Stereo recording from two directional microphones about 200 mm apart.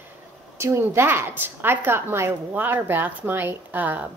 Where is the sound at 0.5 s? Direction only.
15° right (ahead or behind).